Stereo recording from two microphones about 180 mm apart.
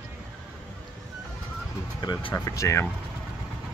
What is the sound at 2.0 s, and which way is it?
Speech, 25° left (ahead or behind).